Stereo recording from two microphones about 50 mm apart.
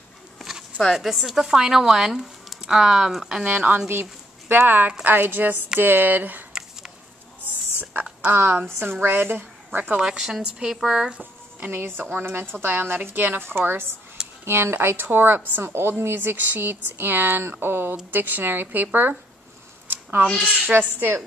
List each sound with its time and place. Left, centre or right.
0.4 s a sound: centre
0.9 s speech: centre
3.4 s a woman's voice: right
3.9 s a woman's voice: right
7.8 s a sound: right
8.3 s a woman's voice: right
9.9 s speech: centre
12.0 s a woman's voice: right
19.9 s a sound: right
20.6 s a woman's voice: right